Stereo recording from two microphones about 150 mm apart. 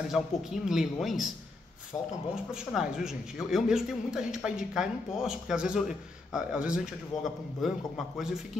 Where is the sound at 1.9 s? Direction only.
20° left (ahead or behind).